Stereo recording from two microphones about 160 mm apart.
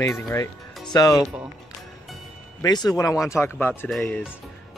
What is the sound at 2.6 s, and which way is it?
Speech, 25° left (ahead or behind).